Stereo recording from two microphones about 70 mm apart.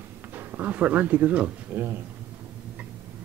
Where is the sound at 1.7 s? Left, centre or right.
Right.